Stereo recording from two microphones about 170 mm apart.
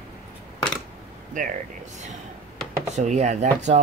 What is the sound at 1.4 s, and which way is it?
Speech, 50° right (ahead or behind).